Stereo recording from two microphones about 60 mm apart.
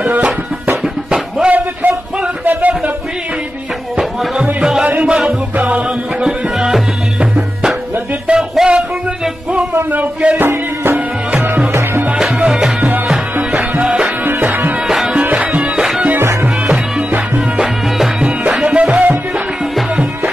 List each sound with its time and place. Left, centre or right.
0.0 s music: right
1.5 s a sound: right
4.6 s music: centre
9.8 s a sound: right
10.5 s music: right
12.4 s music: centre
13.7 s music: centre
14.2 s music: right
14.9 s music: centre
15.1 s music: right
17.6 s music: centre
18.6 s music: centre